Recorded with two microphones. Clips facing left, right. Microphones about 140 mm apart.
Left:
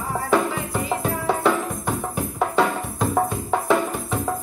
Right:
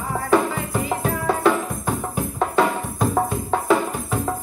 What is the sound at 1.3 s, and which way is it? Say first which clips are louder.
Music: right 1 dB; 5° right (ahead or behind).